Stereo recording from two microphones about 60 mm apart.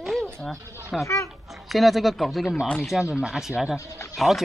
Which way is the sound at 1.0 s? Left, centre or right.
Left.